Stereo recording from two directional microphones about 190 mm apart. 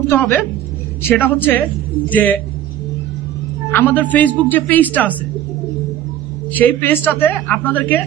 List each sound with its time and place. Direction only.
0.1 s a woman's voice: 10° left (ahead or behind)
3.7 s a woman's voice: 10° left (ahead or behind)
6.5 s a woman's voice: 10° left (ahead or behind)